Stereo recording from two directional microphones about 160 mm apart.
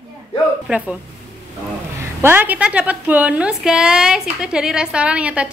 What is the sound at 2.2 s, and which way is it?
A woman's voice, 10° right (ahead or behind).